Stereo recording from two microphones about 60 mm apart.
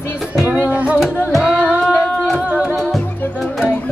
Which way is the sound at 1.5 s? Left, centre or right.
Right.